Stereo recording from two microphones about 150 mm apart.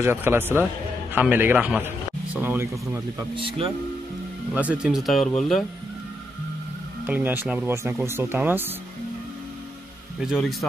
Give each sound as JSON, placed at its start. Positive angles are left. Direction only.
{"t": 0.0, "sound": "speech", "side_deg": -15}
{"t": 3.3, "sound": "speech", "side_deg": -40}
{"t": 4.6, "sound": "speech", "side_deg": -10}
{"t": 7.1, "sound": "speech", "side_deg": -10}
{"t": 10.2, "sound": "speech", "side_deg": -5}